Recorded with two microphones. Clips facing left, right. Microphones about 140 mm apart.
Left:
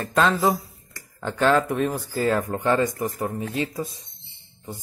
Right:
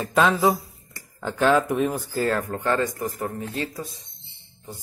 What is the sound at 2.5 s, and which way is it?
Speech, 20° left (ahead or behind).